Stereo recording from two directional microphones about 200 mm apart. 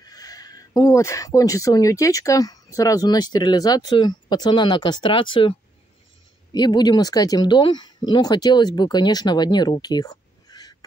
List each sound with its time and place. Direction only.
0.0 s speech: 20° left (ahead or behind)